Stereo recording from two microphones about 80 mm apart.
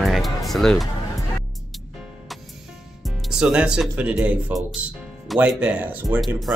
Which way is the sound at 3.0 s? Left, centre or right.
Centre.